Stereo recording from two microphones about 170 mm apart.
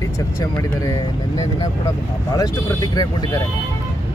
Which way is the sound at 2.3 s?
25° left (ahead or behind).